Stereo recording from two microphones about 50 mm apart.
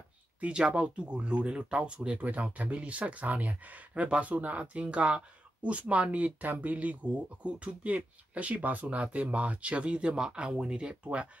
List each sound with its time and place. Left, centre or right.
0.4 s speech: centre